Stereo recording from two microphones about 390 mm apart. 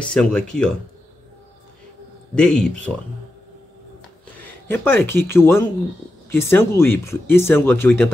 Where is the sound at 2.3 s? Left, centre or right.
Centre.